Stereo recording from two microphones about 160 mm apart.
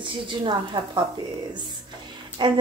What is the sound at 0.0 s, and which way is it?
A woman's voice, 30° right (ahead or behind).